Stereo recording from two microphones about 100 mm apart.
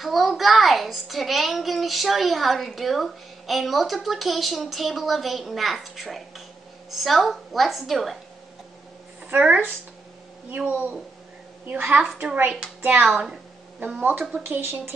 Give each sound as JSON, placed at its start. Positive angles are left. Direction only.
{"t": 0.0, "sound": "a woman's voice", "side_deg": 0}
{"t": 9.3, "sound": "a woman's voice", "side_deg": -15}
{"t": 14.4, "sound": "speech", "side_deg": -20}